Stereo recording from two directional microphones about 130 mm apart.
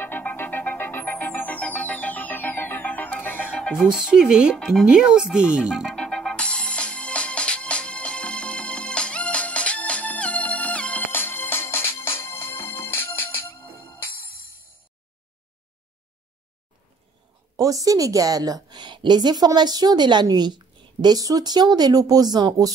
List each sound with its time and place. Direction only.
0.0 s music: 15° left (ahead or behind)
3.7 s speech: 5° right (ahead or behind)
4.6 s music: centre (ahead or behind); by 13.8 s 15° left (ahead or behind)
17.6 s a woman's voice: 25° right (ahead or behind)